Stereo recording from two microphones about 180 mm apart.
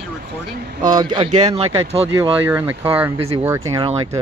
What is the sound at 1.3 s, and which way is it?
Speech, 35° right (ahead or behind).